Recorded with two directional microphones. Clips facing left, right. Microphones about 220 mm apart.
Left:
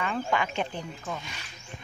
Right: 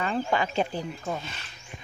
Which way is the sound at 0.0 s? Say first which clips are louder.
Right 2 dB; 35° right (ahead or behind).